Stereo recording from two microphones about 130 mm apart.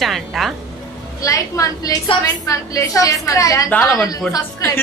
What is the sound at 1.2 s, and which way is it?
A woman's voice, 25° left (ahead or behind).